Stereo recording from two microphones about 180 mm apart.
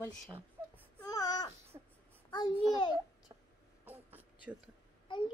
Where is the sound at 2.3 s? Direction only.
25° left (ahead or behind).